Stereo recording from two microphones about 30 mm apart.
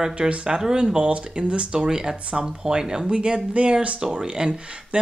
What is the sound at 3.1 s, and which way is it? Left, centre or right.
Speech, right.